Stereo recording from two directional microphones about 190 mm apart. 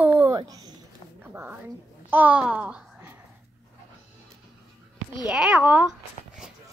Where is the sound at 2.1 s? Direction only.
10° right (ahead or behind).